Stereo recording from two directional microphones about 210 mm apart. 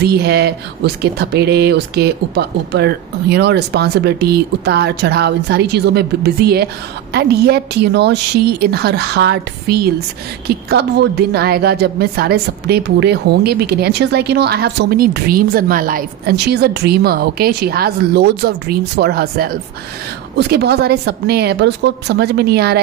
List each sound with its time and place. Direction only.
0.0 s speech: 50° right (ahead or behind)